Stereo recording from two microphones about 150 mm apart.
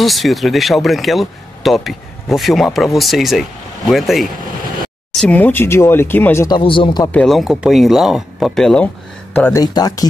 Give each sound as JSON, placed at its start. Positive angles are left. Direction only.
{"t": 0.0, "sound": "speech", "side_deg": 0}
{"t": 6.4, "sound": "speech", "side_deg": 35}
{"t": 7.1, "sound": "speech", "side_deg": 5}
{"t": 9.6, "sound": "speech", "side_deg": 25}